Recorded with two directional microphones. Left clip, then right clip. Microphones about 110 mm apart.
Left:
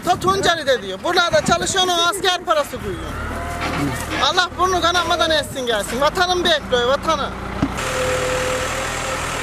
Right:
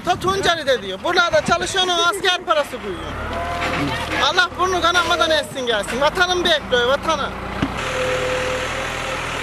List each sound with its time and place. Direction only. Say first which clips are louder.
0.0 s speech: left 2 dB; centre (ahead or behind)
3.6 s vehicle: left 1 dB; 35° right (ahead or behind)
4.2 s speech: even; 5° left (ahead or behind)
7.9 s vehicle: even; 10° left (ahead or behind)